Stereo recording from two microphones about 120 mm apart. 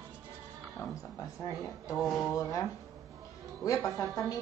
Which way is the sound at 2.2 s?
30° left (ahead or behind).